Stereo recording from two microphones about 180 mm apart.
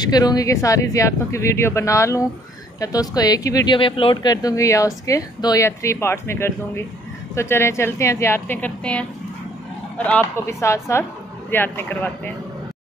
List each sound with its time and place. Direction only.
0.0 s a man's voice: 20° left (ahead or behind)